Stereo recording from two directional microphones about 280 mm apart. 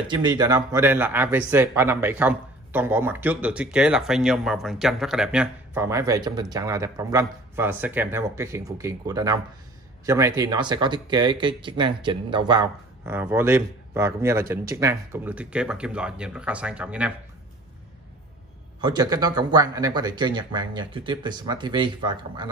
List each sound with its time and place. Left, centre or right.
0.1 s speech: centre
18.8 s speech: centre